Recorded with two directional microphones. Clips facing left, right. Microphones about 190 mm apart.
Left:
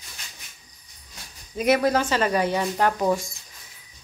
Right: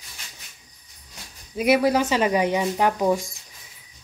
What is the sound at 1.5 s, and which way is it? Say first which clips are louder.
Speech: right 1 dB; 10° right (ahead or behind).